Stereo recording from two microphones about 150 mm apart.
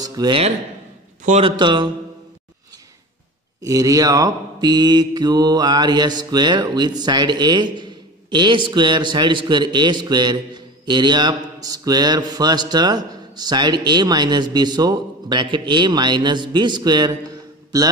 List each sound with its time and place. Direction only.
0.0 s a sound: 25° right (ahead or behind)
1.4 s a man's voice: 30° right (ahead or behind)
3.6 s mantra: 20° right (ahead or behind)